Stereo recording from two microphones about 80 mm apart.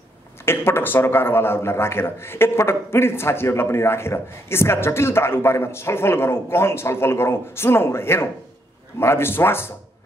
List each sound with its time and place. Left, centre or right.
0.5 s a man's voice: left